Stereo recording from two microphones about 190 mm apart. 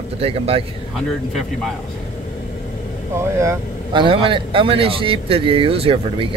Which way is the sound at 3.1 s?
15° right (ahead or behind).